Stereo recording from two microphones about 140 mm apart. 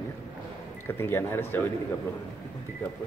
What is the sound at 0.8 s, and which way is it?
Speech, 15° left (ahead or behind).